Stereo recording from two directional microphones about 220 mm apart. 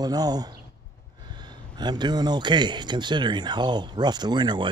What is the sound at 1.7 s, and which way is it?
Speech, 20° right (ahead or behind).